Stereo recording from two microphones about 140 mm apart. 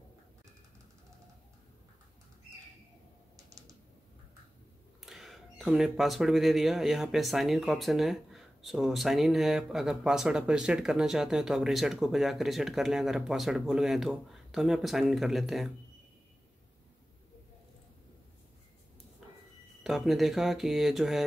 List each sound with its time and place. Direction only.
3.3 s typing: 25° right (ahead or behind)
5.0 s speech: centre (ahead or behind)
19.8 s speech: centre (ahead or behind)